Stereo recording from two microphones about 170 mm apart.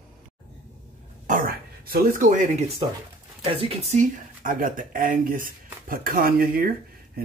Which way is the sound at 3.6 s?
40° right (ahead or behind).